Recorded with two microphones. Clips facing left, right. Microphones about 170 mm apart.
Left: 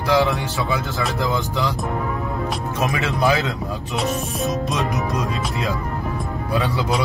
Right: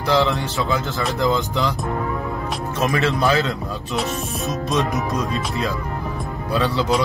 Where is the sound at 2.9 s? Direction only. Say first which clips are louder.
Right 2 dB; 10° left (ahead or behind).